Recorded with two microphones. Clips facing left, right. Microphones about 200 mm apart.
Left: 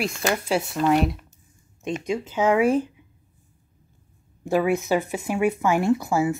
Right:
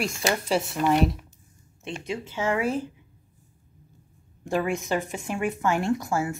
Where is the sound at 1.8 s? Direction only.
15° left (ahead or behind).